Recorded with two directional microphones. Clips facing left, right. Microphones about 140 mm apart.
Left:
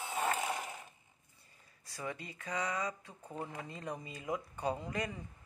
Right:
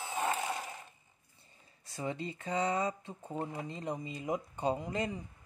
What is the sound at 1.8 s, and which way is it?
Speech, 25° right (ahead or behind).